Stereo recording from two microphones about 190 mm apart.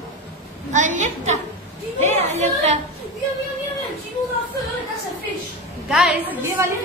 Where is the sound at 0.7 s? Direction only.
40° right (ahead or behind).